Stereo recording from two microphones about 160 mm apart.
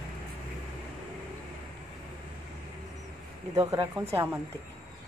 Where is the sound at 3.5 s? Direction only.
20° right (ahead or behind).